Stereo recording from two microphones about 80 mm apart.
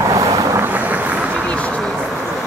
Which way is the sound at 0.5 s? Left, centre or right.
Right.